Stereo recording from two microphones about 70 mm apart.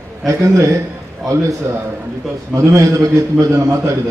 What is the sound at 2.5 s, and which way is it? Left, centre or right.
A man's voice, right.